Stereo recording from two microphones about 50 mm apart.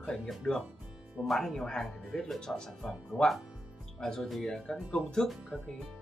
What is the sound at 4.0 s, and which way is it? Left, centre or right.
Speech, centre.